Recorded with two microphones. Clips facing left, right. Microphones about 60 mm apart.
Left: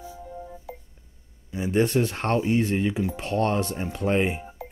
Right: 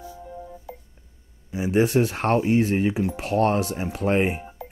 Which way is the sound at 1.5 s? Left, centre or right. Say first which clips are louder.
Right 2 dB; centre.